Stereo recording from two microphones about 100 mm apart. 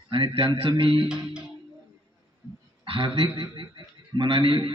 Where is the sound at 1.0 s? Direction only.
10° right (ahead or behind).